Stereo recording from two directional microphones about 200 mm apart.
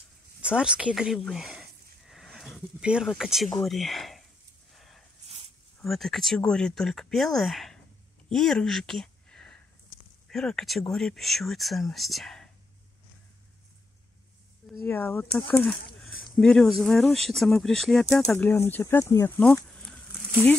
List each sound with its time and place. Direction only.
0.4 s speech: 5° right (ahead or behind)
4.7 s a sound: centre (ahead or behind)
5.8 s speech: centre (ahead or behind)
8.3 s a sound: 5° left (ahead or behind)
10.3 s speech: centre (ahead or behind)
14.9 s speech: 10° left (ahead or behind)
18.2 s speech: 10° left (ahead or behind)